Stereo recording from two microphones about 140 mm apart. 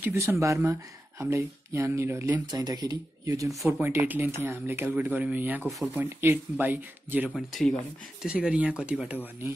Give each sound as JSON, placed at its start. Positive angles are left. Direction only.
{"t": 0.0, "sound": "speech", "side_deg": -20}
{"t": 2.4, "sound": "speech", "side_deg": -30}
{"t": 3.5, "sound": "speech", "side_deg": 0}
{"t": 3.8, "sound": "speech", "side_deg": -15}
{"t": 7.2, "sound": "speech", "side_deg": 0}